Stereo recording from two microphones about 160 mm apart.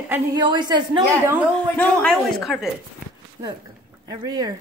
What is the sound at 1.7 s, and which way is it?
Speech, 10° left (ahead or behind).